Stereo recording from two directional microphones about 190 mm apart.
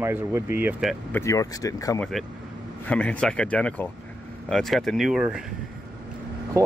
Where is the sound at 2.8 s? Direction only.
5° left (ahead or behind).